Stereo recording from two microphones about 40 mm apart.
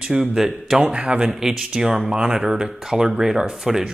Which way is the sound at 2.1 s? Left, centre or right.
Right.